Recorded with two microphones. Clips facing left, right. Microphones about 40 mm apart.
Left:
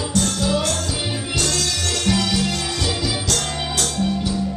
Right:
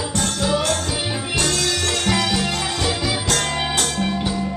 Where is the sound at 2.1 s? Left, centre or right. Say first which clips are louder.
Even; centre.